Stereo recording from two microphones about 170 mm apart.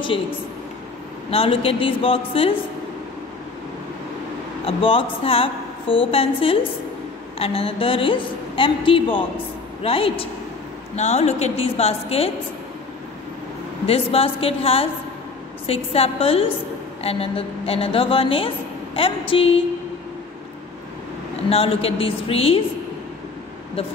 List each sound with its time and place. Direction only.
1.3 s a woman's voice: 35° left (ahead or behind)
4.6 s a woman's voice: 30° left (ahead or behind)
13.8 s a woman's voice: 35° left (ahead or behind)
21.5 s a woman's voice: 35° left (ahead or behind)